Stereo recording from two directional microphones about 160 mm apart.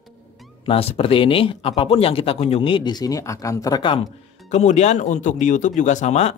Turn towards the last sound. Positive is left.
turn(degrees=45)  # may be behind; listen again after turning